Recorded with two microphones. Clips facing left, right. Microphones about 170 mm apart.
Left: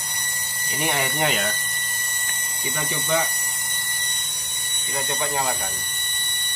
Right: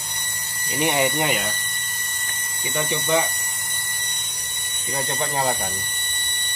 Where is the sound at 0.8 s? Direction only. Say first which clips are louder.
Right 3 dB; 15° right (ahead or behind).